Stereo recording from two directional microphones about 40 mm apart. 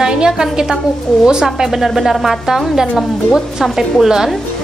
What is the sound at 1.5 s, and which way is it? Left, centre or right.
A woman's voice, centre.